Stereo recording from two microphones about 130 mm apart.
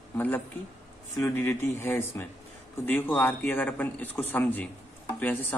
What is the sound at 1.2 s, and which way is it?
Speech, 20° left (ahead or behind).